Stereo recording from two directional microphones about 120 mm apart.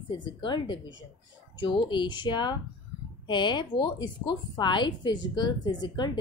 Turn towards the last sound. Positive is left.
turn(degrees=40)  # may be behind; listen again after turning